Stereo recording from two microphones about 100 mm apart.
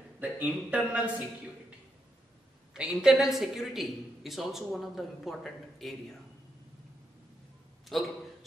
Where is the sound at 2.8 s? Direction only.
5° right (ahead or behind).